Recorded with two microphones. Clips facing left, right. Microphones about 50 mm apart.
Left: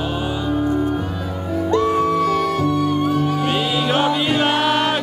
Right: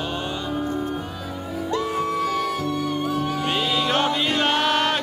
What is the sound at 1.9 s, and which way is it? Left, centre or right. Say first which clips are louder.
Music: left 7 dB; centre.